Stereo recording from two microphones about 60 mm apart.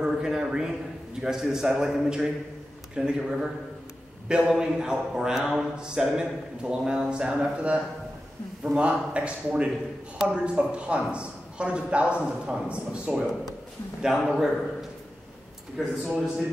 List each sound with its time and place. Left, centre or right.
0.0 s a man's voice: centre
14.0 s a man's voice: centre